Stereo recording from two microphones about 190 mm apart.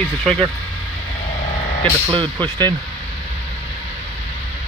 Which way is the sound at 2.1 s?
25° right (ahead or behind).